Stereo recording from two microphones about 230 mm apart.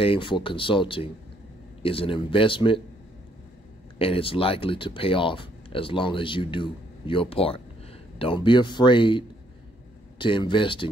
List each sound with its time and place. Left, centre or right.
0.0 s speech: left
4.0 s speech: left